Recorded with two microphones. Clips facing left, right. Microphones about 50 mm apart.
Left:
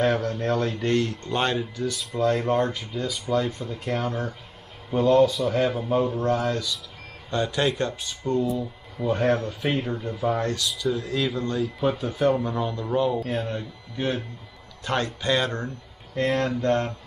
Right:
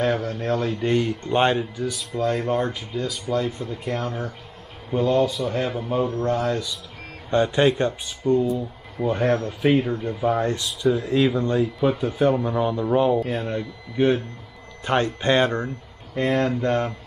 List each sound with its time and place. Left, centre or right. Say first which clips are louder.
0.0 s a man's voice: even; centre
0.8 s a man's voice: right 2 dB; centre
6.4 s speech: right 2 dB; centre
7.2 s speech: right 6 dB; right
9.0 s a man's voice: right 1 dB; centre; by 11.7 s right
11.8 s speech: right 1 dB; centre